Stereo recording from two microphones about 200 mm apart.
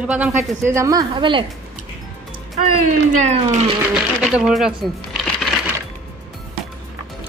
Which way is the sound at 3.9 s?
Centre (ahead or behind).